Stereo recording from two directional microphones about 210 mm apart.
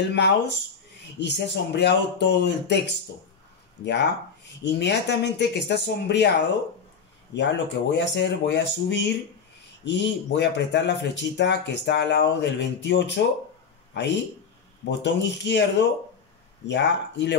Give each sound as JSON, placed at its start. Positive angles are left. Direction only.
{"t": 0.1, "sound": "speech", "side_deg": 55}
{"t": 3.8, "sound": "speech", "side_deg": 55}
{"t": 7.3, "sound": "speech", "side_deg": 55}
{"t": 16.6, "sound": "speech", "side_deg": 55}